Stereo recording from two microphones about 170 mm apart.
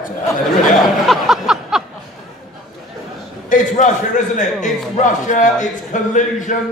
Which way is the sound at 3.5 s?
50° left (ahead or behind).